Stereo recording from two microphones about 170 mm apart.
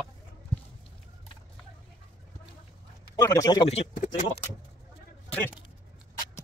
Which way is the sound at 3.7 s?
40° left (ahead or behind).